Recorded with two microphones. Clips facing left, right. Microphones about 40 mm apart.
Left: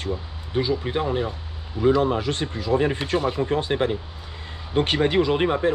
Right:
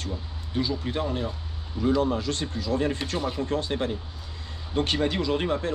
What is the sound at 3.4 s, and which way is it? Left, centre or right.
Speech, left.